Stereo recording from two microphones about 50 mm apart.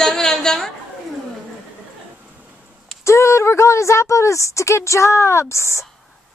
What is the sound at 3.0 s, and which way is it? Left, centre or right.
A woman's voice, left.